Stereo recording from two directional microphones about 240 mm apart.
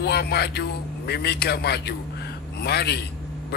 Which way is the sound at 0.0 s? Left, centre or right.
Left.